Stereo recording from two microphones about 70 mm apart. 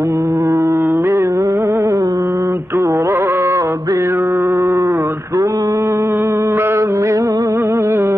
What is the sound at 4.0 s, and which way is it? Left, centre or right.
Mantra, right.